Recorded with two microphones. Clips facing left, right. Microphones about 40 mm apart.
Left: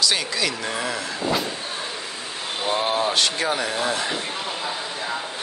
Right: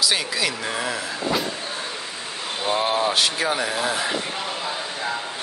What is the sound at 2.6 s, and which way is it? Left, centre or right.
Speech, centre.